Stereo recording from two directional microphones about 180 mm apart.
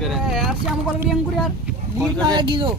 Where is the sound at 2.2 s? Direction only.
25° right (ahead or behind).